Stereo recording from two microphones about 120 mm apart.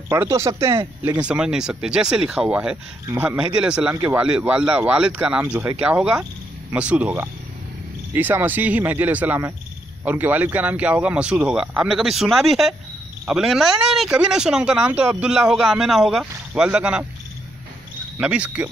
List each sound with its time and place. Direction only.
0.1 s speech: 25° right (ahead or behind)
0.7 s speech: 35° right (ahead or behind)
1.2 s a man's voice: 10° right (ahead or behind)
18.2 s a man's voice: 10° right (ahead or behind)